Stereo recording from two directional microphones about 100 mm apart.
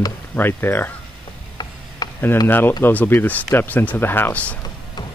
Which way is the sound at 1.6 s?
40° left (ahead or behind).